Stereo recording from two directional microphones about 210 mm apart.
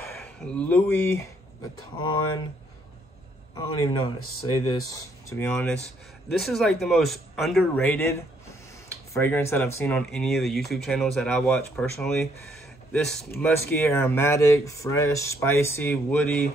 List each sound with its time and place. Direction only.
0.1 s speech: 10° left (ahead or behind)
3.5 s speech: 20° left (ahead or behind)
5.3 s a man's voice: 10° left (ahead or behind)